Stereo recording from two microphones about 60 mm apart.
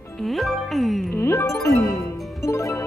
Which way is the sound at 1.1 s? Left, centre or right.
Left.